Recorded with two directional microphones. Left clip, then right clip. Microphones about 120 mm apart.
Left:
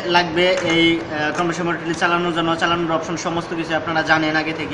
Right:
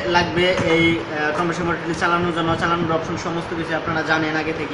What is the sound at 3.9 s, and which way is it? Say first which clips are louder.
Speech: left 4 dB; 50° left (ahead or behind).